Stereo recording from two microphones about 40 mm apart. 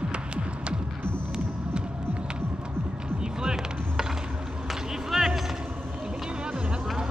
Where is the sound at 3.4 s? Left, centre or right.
Centre.